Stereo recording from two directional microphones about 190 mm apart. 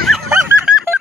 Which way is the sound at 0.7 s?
5° right (ahead or behind).